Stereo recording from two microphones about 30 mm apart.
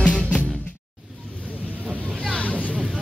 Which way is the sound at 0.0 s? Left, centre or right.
Left.